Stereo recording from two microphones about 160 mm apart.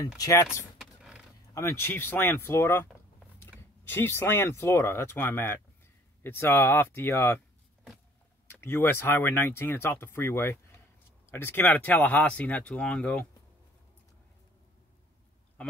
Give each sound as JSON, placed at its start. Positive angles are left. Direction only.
{"t": 0.2, "sound": "speech", "side_deg": 20}
{"t": 0.7, "sound": "vehicle", "side_deg": -5}
{"t": 1.5, "sound": "speech", "side_deg": 20}
{"t": 8.5, "sound": "speech", "side_deg": 15}